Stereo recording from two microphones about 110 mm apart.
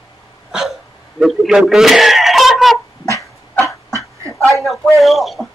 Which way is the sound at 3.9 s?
30° right (ahead or behind).